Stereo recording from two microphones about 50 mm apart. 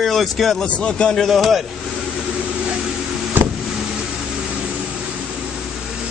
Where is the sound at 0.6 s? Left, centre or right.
Centre.